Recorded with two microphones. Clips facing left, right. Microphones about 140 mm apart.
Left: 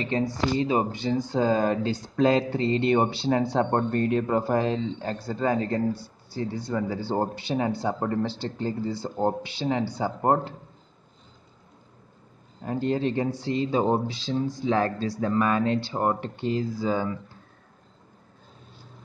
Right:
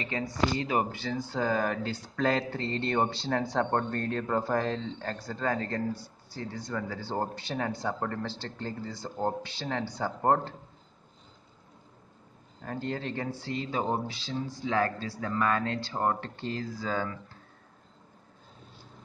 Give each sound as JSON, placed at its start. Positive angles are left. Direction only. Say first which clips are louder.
{"t": 0.0, "sound": "a man's voice", "louder": "left 4 dB", "side_deg": 30}
{"t": 12.6, "sound": "a man's voice", "louder": "left 8 dB", "side_deg": 20}